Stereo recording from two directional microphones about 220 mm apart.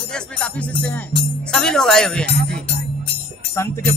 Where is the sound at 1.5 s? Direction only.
Centre (ahead or behind).